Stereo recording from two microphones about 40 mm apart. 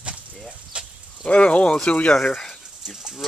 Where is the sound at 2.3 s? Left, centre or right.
Centre.